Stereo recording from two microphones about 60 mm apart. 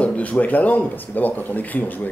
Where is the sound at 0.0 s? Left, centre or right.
Left.